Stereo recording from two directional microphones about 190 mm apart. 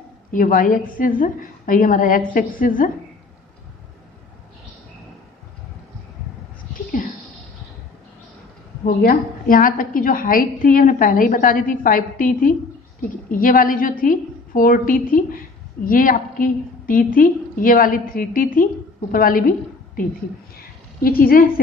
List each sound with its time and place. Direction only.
0.3 s a woman's voice: 45° left (ahead or behind)
8.8 s a woman's voice: 50° left (ahead or behind)
20.5 s a sound: 50° left (ahead or behind)